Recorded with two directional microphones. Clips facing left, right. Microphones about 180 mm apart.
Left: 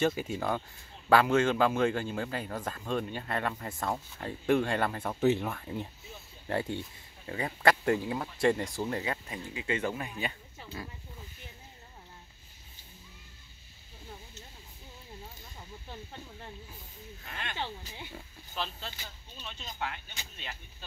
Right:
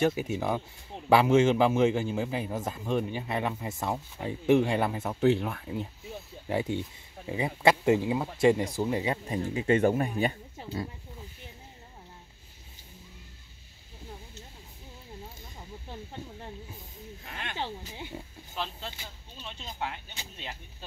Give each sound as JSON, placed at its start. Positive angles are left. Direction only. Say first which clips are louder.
{"t": 0.0, "sound": "a man's voice", "louder": "right 2 dB", "side_deg": -5}
{"t": 9.3, "sound": "speech", "louder": "right 9 dB", "side_deg": -35}
{"t": 10.6, "sound": "speech", "louder": "right 7 dB", "side_deg": -30}
{"t": 17.3, "sound": "wild animals", "louder": "right 2 dB", "side_deg": -10}